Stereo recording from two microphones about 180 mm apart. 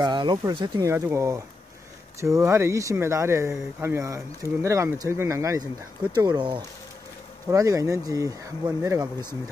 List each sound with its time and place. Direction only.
0.0 s speech: 25° right (ahead or behind)